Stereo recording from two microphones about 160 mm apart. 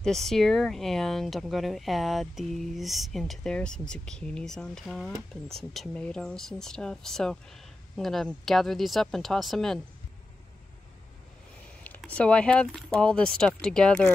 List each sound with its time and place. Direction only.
0.0 s speech: centre (ahead or behind)
11.8 s speech: 10° left (ahead or behind)